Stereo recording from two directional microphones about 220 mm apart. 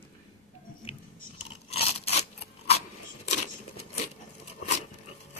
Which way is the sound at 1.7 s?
30° left (ahead or behind).